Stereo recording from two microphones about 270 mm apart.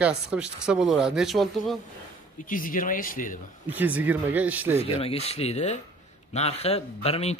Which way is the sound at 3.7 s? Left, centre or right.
Centre.